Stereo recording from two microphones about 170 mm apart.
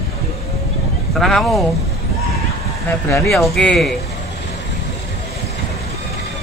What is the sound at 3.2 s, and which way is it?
Speech, centre (ahead or behind).